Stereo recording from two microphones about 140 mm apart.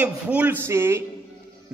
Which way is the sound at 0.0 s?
10° right (ahead or behind).